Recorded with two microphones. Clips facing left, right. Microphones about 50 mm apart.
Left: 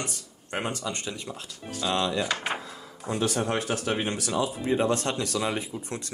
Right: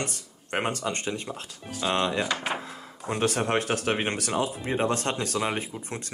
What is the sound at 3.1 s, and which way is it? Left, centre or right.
Speech, right.